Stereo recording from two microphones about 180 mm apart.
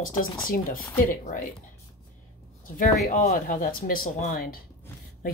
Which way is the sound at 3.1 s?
45° left (ahead or behind).